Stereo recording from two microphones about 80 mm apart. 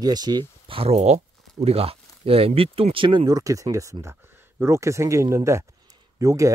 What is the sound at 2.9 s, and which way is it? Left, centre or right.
Speech, right.